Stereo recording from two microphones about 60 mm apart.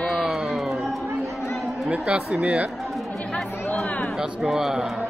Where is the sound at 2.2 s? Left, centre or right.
Right.